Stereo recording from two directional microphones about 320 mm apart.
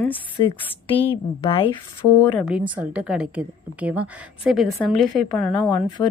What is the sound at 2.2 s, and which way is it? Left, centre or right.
A woman's voice, centre.